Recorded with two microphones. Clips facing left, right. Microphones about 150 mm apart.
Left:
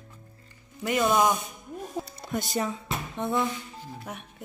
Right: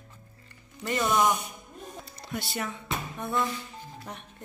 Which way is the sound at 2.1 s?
45° left (ahead or behind).